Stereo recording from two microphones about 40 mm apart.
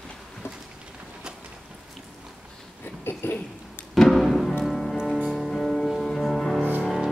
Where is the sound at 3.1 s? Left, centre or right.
Left.